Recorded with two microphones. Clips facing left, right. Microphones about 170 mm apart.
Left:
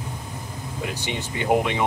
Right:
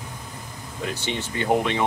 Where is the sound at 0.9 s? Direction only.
15° left (ahead or behind).